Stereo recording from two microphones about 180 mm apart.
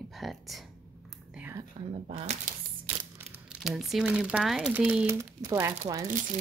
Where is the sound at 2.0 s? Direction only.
40° right (ahead or behind).